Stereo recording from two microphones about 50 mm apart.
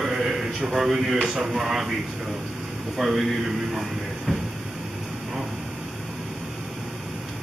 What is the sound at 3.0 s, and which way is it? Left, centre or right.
Speech, centre.